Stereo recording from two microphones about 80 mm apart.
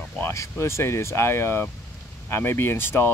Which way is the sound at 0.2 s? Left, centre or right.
Left.